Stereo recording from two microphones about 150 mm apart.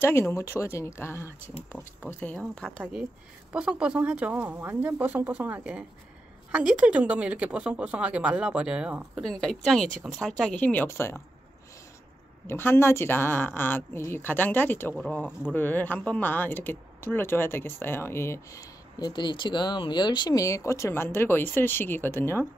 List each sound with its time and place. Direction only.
0.0 s speech: 15° left (ahead or behind)
2.8 s a woman's voice: 5° right (ahead or behind)
9.2 s a woman's voice: 5° left (ahead or behind)
12.4 s speech: 15° left (ahead or behind)